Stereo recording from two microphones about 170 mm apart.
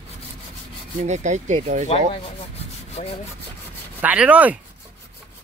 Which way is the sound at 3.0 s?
40° left (ahead or behind).